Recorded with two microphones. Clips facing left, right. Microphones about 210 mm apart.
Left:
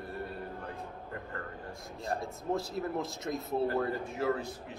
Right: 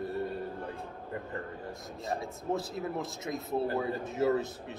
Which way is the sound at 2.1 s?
Centre (ahead or behind).